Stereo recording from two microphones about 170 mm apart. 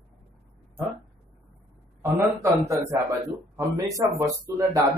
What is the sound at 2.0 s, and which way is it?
A man's voice, 20° right (ahead or behind).